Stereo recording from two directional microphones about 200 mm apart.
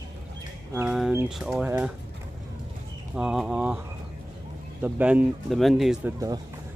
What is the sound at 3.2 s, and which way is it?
Speech, 5° right (ahead or behind).